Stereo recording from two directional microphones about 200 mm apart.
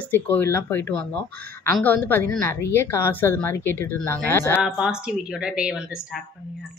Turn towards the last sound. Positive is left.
turn(degrees=-5)  # may be behind; listen again after turning